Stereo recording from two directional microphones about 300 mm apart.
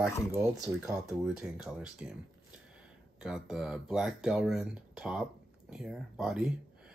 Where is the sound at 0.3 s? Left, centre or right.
Centre.